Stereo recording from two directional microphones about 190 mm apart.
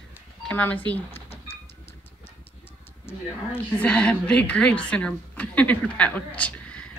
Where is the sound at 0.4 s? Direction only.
10° left (ahead or behind).